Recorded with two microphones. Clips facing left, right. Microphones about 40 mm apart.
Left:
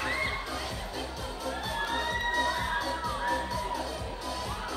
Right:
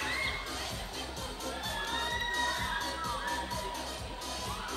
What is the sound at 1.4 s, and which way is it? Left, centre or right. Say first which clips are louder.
Crowd: left 5 dB; centre.